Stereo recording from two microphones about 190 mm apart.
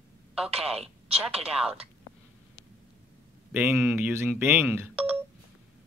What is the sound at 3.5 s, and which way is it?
Speech, 10° right (ahead or behind).